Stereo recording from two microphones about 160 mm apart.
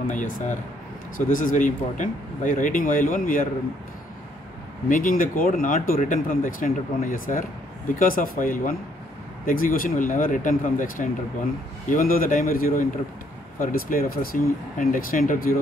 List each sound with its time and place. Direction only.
0.1 s speech: 50° left (ahead or behind)
4.8 s speech: 55° left (ahead or behind)